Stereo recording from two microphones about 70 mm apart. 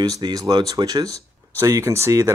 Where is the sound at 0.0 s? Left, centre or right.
Right.